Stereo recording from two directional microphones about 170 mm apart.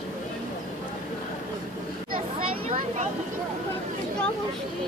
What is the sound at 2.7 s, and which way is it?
Speech, 45° right (ahead or behind).